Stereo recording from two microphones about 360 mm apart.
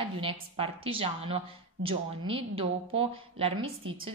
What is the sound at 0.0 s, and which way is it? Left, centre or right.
Speech, centre.